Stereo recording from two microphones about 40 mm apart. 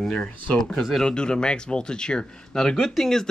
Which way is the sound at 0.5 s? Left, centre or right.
Centre.